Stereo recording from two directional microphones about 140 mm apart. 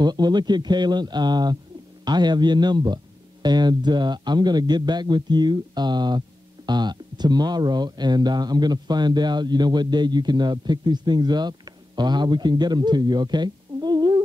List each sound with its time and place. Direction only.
0.0 s a man's voice: 30° right (ahead or behind)